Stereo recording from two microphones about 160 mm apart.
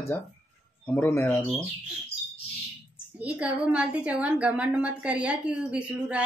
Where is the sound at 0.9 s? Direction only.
15° left (ahead or behind).